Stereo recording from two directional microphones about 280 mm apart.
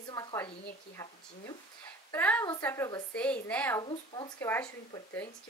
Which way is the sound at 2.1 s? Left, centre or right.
Centre.